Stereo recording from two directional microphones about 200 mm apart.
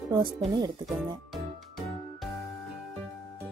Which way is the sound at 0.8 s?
Centre (ahead or behind).